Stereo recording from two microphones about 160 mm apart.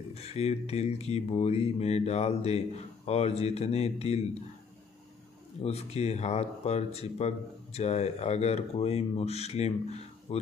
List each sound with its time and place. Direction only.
0.1 s speech: 40° left (ahead or behind)
5.6 s speech: 40° left (ahead or behind)